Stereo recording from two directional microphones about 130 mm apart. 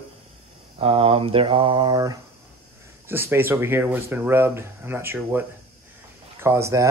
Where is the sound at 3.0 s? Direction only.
20° right (ahead or behind).